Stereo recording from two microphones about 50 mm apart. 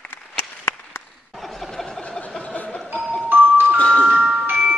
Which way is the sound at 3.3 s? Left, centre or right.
Right.